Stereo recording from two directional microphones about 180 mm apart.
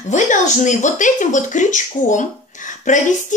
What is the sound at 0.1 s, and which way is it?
Speech, 40° left (ahead or behind).